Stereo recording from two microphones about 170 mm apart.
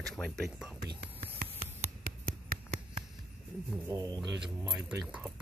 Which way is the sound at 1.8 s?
55° right (ahead or behind).